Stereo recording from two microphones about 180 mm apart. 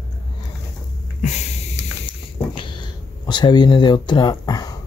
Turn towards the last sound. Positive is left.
turn(degrees=20)  # may be behind; listen again after turning